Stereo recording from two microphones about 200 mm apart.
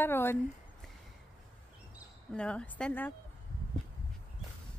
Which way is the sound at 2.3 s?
5° left (ahead or behind).